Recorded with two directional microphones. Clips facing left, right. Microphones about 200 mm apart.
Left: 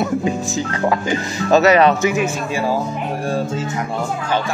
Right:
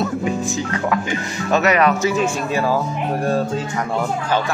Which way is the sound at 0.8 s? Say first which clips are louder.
Left 5 dB; 30° left (ahead or behind).